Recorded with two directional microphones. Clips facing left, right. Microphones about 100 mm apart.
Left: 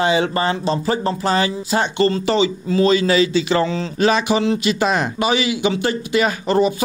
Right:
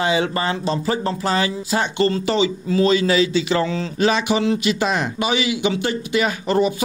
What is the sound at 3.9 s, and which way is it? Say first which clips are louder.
Speech: left 2 dB; 45° left (ahead or behind).